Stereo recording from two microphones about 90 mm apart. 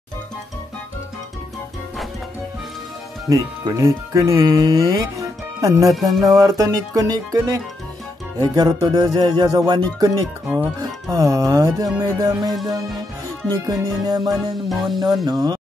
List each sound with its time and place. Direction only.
3.3 s speech: 45° right (ahead or behind)
5.9 s music: centre (ahead or behind)
6.3 s speech: 40° right (ahead or behind)
13.7 s speech: 45° right (ahead or behind)
14.7 s music: centre (ahead or behind)
15.2 s speech: 50° right (ahead or behind)